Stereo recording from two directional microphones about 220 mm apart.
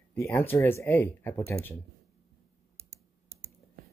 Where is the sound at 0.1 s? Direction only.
10° left (ahead or behind).